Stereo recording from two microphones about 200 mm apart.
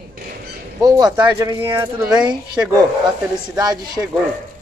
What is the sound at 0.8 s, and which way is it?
A man's voice, 20° right (ahead or behind).